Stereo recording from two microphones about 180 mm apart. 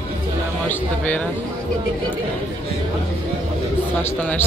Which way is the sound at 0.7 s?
10° left (ahead or behind).